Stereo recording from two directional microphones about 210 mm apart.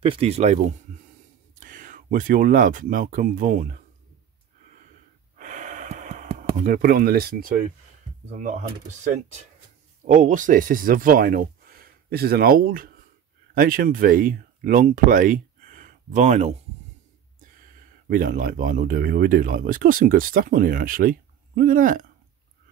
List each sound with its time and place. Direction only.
0.0 s speech: 25° right (ahead or behind)
5.4 s gasp: 35° right (ahead or behind)
8.3 s speech: 35° right (ahead or behind)
18.0 s speech: 40° right (ahead or behind)